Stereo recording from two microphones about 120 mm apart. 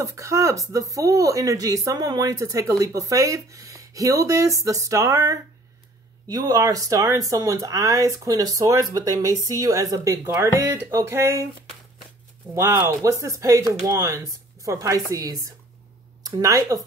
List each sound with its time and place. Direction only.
0.0 s speech: 25° right (ahead or behind)
12.5 s speech: 25° right (ahead or behind)